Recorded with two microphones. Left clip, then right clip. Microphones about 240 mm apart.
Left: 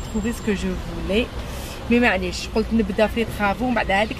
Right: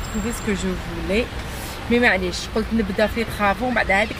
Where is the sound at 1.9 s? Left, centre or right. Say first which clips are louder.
Right 1 dB; centre.